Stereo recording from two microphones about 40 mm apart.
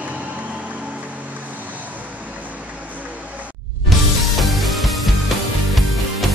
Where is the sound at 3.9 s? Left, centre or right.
Centre.